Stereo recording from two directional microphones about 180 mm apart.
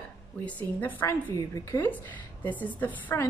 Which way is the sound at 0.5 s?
10° left (ahead or behind).